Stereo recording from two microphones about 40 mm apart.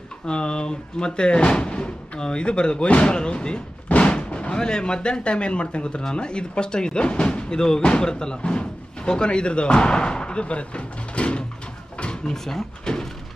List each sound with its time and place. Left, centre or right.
0.3 s speech: left
12.0 s drawer open or close: left
12.4 s speech: centre